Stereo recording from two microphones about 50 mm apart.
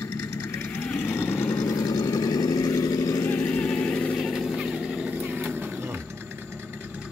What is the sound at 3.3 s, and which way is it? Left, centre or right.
Vehicle, left.